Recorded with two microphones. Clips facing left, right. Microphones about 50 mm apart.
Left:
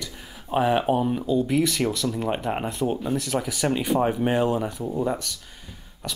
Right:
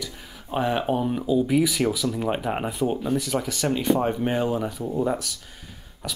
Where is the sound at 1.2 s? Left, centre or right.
Centre.